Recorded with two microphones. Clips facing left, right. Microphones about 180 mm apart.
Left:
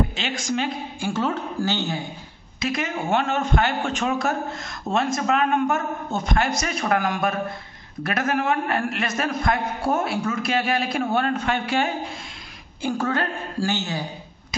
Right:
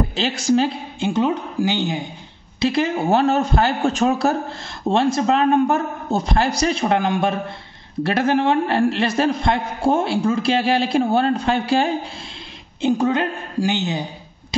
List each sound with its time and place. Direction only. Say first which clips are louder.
0.1 s a man's voice: right 8 dB; 35° right (ahead or behind)
0.9 s a woman's voice: right 6 dB; 20° right (ahead or behind)
2.6 s a man's voice: right 7 dB; 30° right (ahead or behind)
12.8 s a man's voice: right 6 dB; 20° right (ahead or behind)